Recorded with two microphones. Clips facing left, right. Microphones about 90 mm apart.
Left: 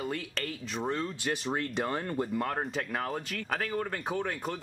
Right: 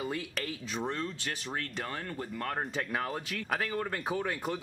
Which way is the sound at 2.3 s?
5° left (ahead or behind).